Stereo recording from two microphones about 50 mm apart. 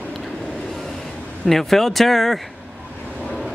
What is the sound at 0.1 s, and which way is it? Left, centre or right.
Vehicle, centre.